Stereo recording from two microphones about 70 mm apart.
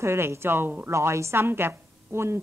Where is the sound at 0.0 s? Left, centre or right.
Right.